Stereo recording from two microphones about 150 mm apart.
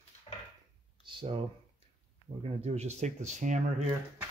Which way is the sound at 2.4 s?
45° right (ahead or behind).